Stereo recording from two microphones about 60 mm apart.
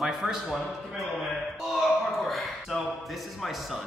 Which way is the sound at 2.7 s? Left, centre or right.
Centre.